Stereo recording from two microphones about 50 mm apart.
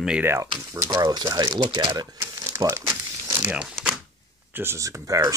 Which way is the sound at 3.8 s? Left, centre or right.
Centre.